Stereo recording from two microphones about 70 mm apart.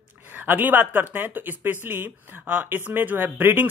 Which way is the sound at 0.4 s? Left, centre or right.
Right.